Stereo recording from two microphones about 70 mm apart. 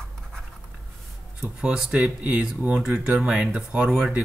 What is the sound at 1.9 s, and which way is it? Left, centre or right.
Speech, centre.